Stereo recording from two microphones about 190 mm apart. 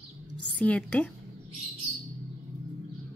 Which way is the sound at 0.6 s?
5° left (ahead or behind).